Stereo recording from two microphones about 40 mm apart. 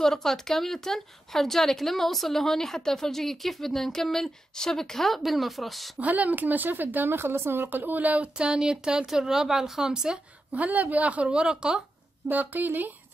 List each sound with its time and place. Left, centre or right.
0.0 s speech: centre
5.9 s speech: right
7.2 s a woman's voice: right
7.6 s speech: right
8.4 s speech: right
10.5 s speech: right
11.4 s speech: centre
12.3 s speech: right